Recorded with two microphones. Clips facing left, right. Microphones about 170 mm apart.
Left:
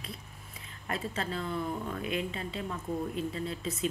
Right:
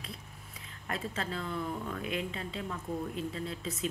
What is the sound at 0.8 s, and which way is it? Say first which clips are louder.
Speech: left 2 dB; 5° left (ahead or behind).